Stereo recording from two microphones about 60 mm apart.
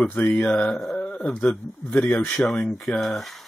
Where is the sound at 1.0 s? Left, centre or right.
Left.